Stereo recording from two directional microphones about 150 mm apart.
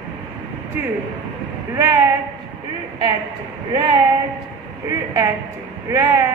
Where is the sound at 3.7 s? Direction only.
30° right (ahead or behind).